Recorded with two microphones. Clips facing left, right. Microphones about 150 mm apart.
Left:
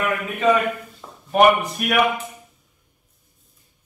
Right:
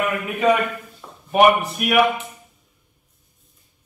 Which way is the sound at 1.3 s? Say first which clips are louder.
Even; 5° right (ahead or behind).